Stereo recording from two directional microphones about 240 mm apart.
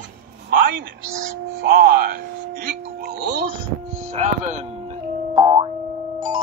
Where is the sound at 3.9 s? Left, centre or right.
Right.